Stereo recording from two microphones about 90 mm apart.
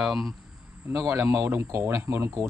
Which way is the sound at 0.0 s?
Centre (ahead or behind).